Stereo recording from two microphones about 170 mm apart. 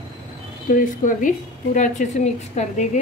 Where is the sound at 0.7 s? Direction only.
50° left (ahead or behind).